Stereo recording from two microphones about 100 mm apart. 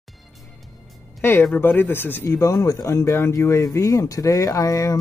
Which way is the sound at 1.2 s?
20° left (ahead or behind).